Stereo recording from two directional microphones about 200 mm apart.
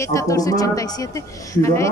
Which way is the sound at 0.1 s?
15° left (ahead or behind).